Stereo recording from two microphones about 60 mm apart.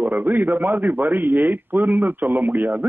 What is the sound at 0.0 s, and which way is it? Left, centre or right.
A man's voice, right.